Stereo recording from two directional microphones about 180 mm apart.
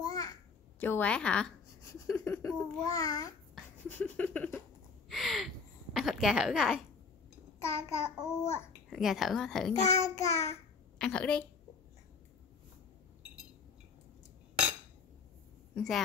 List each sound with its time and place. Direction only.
0.0 s babbling: 20° left (ahead or behind)
3.5 s speech: 10° left (ahead or behind)
5.1 s a sound: centre (ahead or behind)
5.9 s speech: centre (ahead or behind)
7.6 s child singing: 15° left (ahead or behind)
8.9 s speech: centre (ahead or behind)
9.8 s child singing: 40° left (ahead or behind)
11.0 s child singing: 5° left (ahead or behind)
15.7 s a woman's voice: 5° left (ahead or behind)